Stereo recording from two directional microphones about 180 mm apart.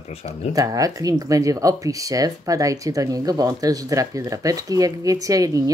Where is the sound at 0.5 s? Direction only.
20° right (ahead or behind).